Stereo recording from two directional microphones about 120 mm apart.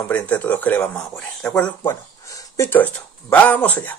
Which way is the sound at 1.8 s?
20° left (ahead or behind).